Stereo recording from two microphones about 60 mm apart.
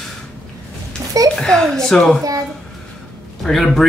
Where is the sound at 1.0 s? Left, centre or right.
Right.